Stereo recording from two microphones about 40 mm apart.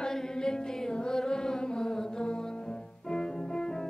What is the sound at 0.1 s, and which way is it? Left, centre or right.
Music, centre.